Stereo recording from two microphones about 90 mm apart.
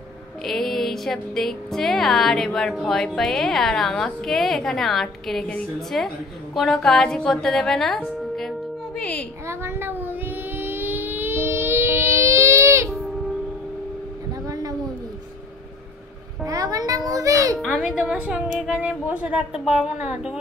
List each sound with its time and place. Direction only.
0.5 s a woman's voice: centre (ahead or behind)
8.4 s music: 10° left (ahead or behind)
9.5 s a sound: 25° right (ahead or behind)
16.4 s a child's voice: 40° right (ahead or behind)
17.7 s a woman's voice: 10° right (ahead or behind)